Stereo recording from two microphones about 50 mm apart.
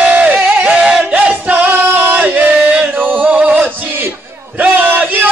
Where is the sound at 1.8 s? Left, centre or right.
Right.